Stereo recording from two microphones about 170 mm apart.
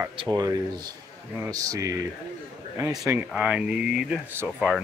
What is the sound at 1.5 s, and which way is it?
Speech, 20° right (ahead or behind).